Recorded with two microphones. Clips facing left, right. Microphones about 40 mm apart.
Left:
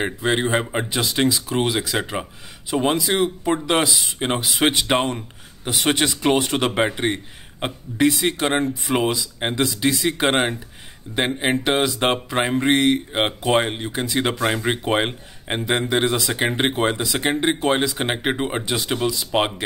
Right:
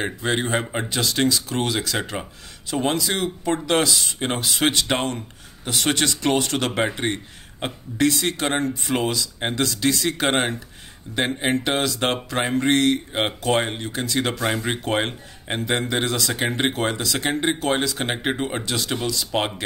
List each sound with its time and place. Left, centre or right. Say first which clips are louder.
0.0 s speech: left 3 dB; centre